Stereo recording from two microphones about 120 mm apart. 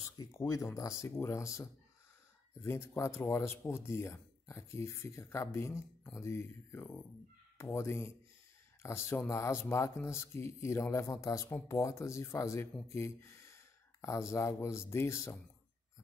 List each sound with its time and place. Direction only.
0.2 s speech: 25° left (ahead or behind)